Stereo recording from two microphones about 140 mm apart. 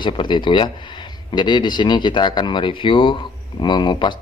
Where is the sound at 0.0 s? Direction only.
35° left (ahead or behind).